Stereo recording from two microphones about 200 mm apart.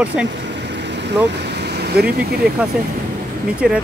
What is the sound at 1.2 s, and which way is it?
Speech, 55° right (ahead or behind).